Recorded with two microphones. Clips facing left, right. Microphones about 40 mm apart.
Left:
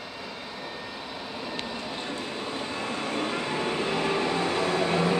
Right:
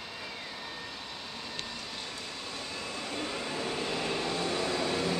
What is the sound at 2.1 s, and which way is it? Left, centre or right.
Vehicle, left.